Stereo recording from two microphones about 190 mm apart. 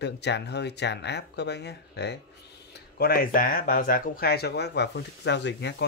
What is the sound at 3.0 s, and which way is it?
Speech, 50° left (ahead or behind).